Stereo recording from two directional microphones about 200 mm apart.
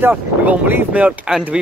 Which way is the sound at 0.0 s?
10° right (ahead or behind).